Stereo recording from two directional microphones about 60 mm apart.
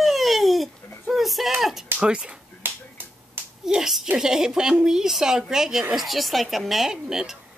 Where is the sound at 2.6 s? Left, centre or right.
Right.